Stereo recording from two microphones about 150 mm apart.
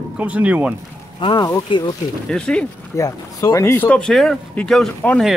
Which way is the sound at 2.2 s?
5° left (ahead or behind).